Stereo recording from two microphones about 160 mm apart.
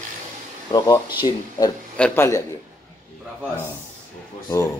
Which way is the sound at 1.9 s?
5° left (ahead or behind).